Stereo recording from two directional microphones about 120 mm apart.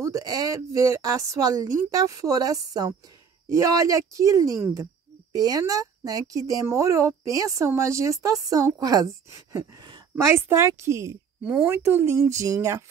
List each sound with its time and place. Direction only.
0.0 s a woman's voice: 30° right (ahead or behind)